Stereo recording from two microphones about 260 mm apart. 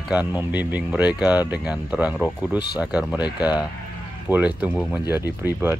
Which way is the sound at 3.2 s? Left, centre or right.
Centre.